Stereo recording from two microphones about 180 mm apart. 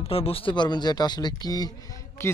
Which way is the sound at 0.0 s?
30° left (ahead or behind).